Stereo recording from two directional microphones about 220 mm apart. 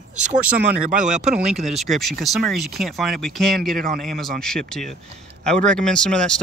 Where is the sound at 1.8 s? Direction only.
Centre (ahead or behind).